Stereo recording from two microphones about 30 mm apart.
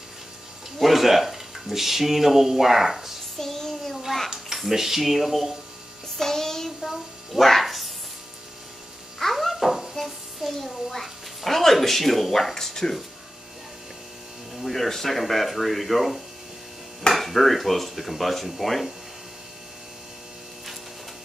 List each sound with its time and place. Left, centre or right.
0.7 s speech: centre
3.3 s child singing: centre
4.6 s speech: centre
6.1 s child singing: centre
6.8 s speech: centre
7.6 s a sound: centre
9.3 s a sound: centre
10.9 s speech: centre
12.5 s a sound: centre
14.6 s speech: centre